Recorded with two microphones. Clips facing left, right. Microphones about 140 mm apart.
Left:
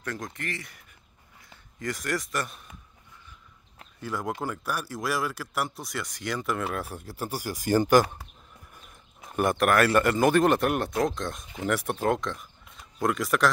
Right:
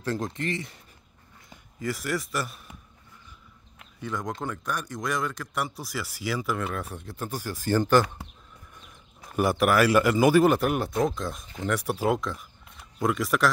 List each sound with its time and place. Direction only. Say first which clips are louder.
0.0 s speech: right 6 dB; 30° right (ahead or behind)
1.8 s speech: right 1 dB; 5° right (ahead or behind)
4.0 s speech: left 1 dB; 5° left (ahead or behind)
9.3 s speech: right 1 dB; 5° right (ahead or behind)